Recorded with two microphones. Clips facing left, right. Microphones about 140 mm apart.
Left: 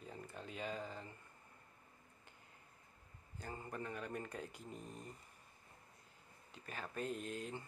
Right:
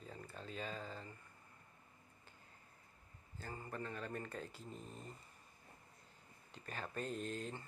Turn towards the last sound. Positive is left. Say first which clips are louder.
# right 1 dB
turn(degrees=10)  # may be behind; listen again after turning